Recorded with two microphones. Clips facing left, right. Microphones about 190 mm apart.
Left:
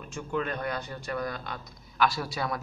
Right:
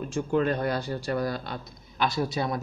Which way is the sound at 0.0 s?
35° right (ahead or behind).